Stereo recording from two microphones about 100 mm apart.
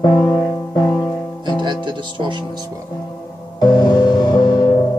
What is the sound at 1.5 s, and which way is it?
Music, 50° right (ahead or behind).